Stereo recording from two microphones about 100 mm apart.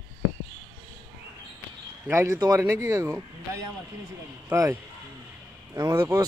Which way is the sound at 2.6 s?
30° right (ahead or behind).